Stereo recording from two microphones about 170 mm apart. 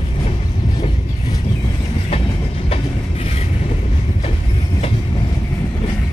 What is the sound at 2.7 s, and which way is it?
Train, 35° left (ahead or behind).